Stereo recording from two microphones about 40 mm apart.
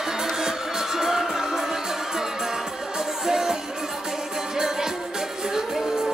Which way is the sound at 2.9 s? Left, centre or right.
Centre.